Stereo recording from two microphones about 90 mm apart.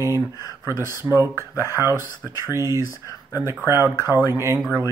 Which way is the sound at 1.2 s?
30° right (ahead or behind).